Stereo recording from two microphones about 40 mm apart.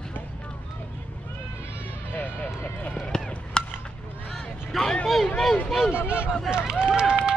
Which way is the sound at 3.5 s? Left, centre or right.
Left.